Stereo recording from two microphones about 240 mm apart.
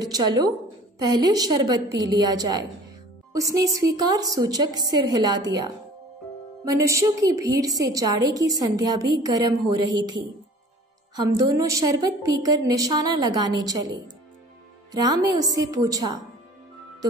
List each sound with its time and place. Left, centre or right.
0.0 s a woman's voice: centre